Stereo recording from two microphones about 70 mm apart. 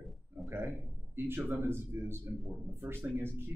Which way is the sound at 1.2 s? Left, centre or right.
Right.